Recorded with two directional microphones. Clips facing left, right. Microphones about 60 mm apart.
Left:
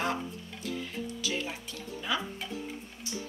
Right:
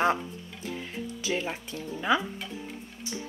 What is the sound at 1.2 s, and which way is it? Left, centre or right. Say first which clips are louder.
Speech: right 6 dB; right.